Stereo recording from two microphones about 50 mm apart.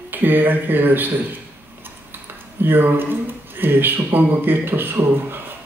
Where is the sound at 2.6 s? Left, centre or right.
Right.